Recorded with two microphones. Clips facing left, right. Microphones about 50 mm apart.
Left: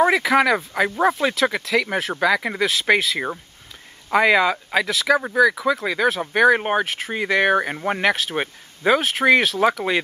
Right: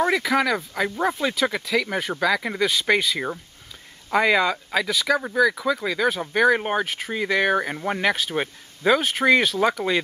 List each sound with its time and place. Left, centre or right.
0.0 s speech: centre
1.3 s speech: centre
6.6 s speech: centre